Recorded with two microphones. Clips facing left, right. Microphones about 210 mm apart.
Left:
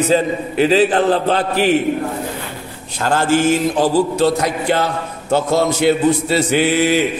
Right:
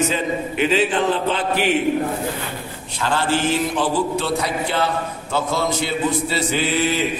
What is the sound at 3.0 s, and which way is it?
A man's voice, 45° left (ahead or behind).